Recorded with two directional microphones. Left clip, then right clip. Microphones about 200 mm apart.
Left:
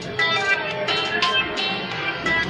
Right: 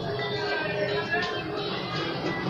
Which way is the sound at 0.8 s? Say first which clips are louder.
Left 6 dB; 40° left (ahead or behind).